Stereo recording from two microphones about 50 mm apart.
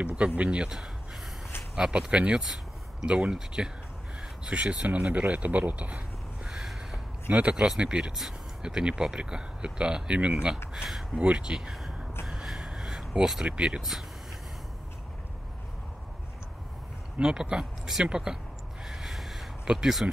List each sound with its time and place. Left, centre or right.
0.4 s speech: right
1.8 s speech: right
5.1 s a sound: right; by 7.0 s centre
7.2 s speech: right
7.5 s speech: centre
10.7 s speech: centre
11.1 s speech: centre
12.3 s a sound: centre
13.5 s speech: right
17.2 s speech: centre
18.9 s a sound: centre
19.7 s speech: centre